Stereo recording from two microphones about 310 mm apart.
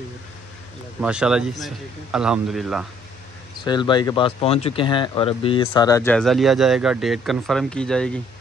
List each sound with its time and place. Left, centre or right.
1.0 s speech: centre
3.6 s speech: centre